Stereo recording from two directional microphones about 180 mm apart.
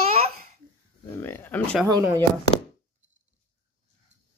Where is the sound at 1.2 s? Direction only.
10° left (ahead or behind).